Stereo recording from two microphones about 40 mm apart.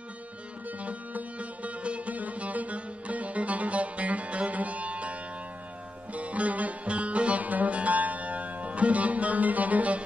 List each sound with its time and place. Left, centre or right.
0.7 s music: right
6.1 s music: right